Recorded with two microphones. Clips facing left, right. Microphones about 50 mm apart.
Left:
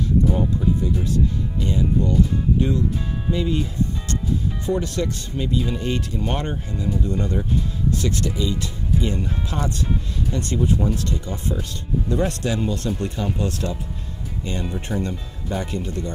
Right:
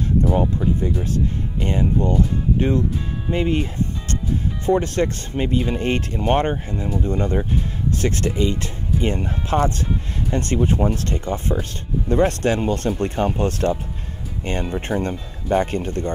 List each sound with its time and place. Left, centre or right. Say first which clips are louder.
0.3 s speech: right 2 dB; right